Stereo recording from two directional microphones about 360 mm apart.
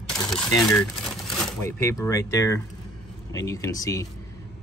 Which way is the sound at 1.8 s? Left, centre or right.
Centre.